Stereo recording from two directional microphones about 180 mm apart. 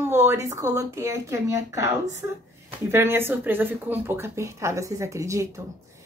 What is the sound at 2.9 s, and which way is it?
A woman's voice, 15° right (ahead or behind).